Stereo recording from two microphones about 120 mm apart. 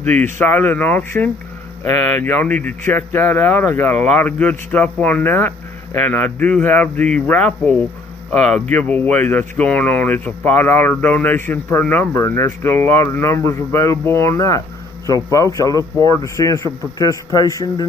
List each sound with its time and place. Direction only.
0.0 s a man's voice: 15° left (ahead or behind)